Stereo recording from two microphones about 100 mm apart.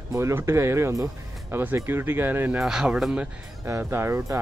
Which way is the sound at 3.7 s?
25° right (ahead or behind).